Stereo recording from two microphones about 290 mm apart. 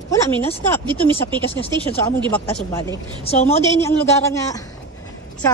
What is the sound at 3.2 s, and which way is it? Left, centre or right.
Speech, left.